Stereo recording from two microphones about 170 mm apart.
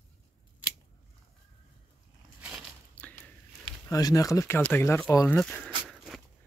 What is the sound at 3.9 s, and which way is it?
Speech, 20° left (ahead or behind).